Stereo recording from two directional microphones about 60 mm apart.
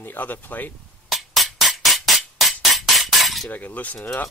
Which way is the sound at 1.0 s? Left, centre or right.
Centre.